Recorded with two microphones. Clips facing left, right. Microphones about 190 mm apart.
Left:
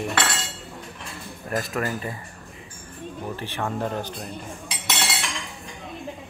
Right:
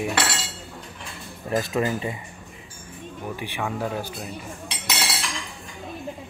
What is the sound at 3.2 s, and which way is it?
Speech, 10° right (ahead or behind).